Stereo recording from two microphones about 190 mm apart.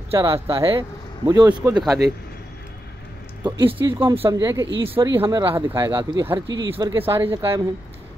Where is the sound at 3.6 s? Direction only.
10° right (ahead or behind); by 5.1 s 25° right (ahead or behind).